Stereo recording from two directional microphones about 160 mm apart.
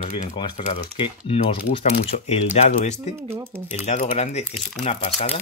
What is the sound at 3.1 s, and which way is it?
Speech, 15° right (ahead or behind).